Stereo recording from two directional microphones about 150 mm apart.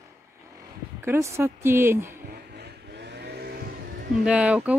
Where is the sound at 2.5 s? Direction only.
90° right.